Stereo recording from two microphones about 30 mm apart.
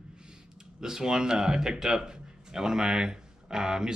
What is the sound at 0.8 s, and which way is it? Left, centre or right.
Speech, right.